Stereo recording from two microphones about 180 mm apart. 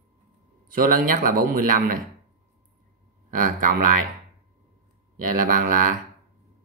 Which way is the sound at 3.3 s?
50° right (ahead or behind).